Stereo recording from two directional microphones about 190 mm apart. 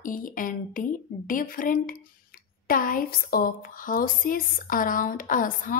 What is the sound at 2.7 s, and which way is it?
Speech, 50° left (ahead or behind).